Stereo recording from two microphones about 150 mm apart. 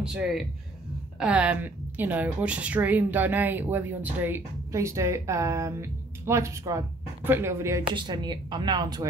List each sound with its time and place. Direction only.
0.0 s a woman's voice: 5° right (ahead or behind)
7.8 s a woman's voice: 30° right (ahead or behind)